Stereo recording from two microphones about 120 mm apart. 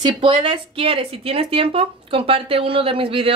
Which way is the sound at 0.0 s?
45° right (ahead or behind).